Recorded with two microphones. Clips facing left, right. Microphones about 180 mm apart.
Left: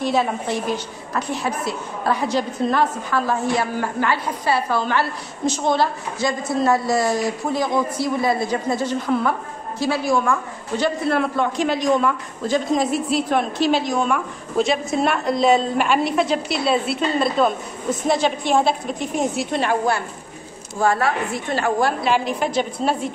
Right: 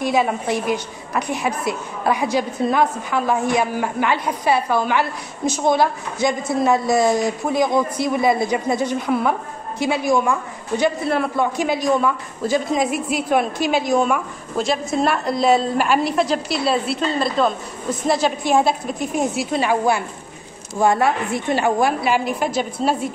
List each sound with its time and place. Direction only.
0.0 s a woman's voice: 10° right (ahead or behind)
20.8 s a woman's voice: 20° right (ahead or behind)